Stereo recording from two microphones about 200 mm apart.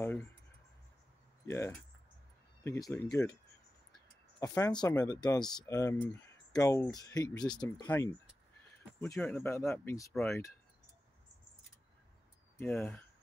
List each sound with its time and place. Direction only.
0.0 s a sound: 10° left (ahead or behind)
1.4 s speech: 15° left (ahead or behind)
4.4 s speech: 15° left (ahead or behind)
7.8 s speech: 10° left (ahead or behind)
12.5 s speech: 10° left (ahead or behind)